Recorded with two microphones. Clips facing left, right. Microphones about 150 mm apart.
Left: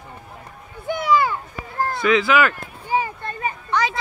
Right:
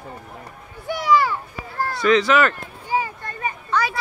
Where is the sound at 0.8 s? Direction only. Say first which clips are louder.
Even; 20° left (ahead or behind).